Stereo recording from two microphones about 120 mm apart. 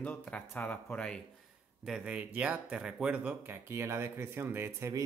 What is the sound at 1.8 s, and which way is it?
Speech, 5° right (ahead or behind).